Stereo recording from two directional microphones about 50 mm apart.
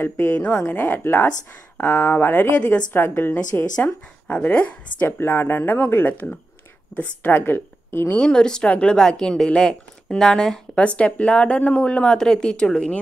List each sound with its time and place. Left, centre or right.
0.0 s a woman's voice: left
1.8 s speech: left
2.2 s a woman's voice: left
4.3 s speech: left
5.1 s a woman's voice: left
7.3 s a woman's voice: left
8.2 s a woman's voice: centre
8.6 s speech: left
8.9 s a woman's voice: centre
11.0 s speech: left
12.2 s a woman's voice: centre